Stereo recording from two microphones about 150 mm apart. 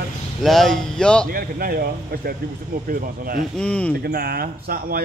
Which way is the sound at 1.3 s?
90° right.